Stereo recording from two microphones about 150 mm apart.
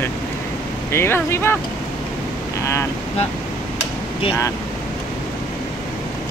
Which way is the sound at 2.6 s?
20° left (ahead or behind).